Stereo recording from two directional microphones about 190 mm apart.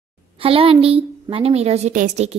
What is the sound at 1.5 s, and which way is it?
Speech, 35° right (ahead or behind).